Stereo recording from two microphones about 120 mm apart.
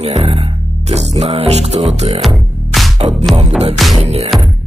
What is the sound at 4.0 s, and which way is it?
Mantra, 55° right (ahead or behind).